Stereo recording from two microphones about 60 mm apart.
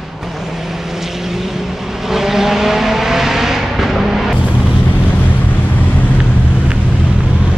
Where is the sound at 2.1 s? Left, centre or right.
Centre.